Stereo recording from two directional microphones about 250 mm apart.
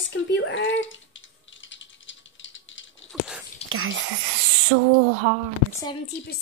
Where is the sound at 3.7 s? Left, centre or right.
Right.